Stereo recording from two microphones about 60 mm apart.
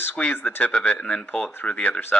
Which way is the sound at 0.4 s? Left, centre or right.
Left.